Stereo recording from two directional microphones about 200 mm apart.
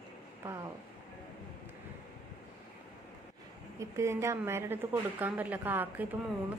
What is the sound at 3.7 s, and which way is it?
A woman's voice, 15° right (ahead or behind).